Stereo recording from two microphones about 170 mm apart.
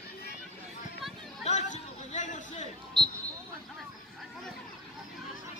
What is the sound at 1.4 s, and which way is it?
Chatter, 45° left (ahead or behind).